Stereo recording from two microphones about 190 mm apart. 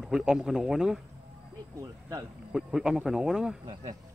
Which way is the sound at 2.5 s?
5° right (ahead or behind).